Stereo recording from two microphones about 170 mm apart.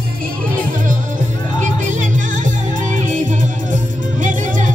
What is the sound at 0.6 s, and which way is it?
Music, 50° right (ahead or behind).